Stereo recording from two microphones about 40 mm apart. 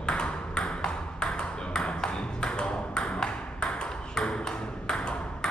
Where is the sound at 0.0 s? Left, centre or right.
Left.